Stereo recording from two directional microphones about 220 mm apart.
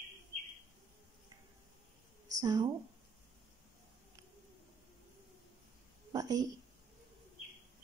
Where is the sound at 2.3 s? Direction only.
15° right (ahead or behind).